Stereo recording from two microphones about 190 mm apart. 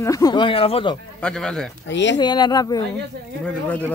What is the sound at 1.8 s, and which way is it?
Speech, 70° left (ahead or behind).